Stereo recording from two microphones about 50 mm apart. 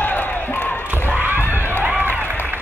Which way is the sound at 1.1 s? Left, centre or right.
Right.